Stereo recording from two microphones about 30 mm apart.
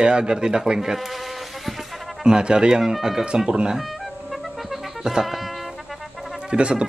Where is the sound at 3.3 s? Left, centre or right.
Right.